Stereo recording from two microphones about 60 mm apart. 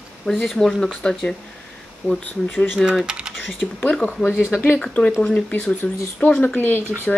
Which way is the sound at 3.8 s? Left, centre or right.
Left.